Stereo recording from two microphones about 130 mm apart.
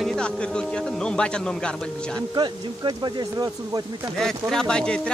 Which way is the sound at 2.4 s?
35° right (ahead or behind).